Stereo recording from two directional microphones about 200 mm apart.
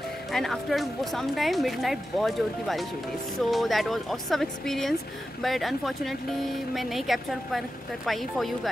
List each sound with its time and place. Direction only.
0.3 s speech: centre (ahead or behind)